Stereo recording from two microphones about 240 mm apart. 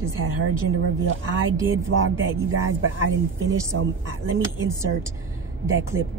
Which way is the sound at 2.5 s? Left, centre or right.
Right.